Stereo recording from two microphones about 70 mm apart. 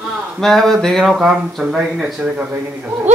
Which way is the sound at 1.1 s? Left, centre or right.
Centre.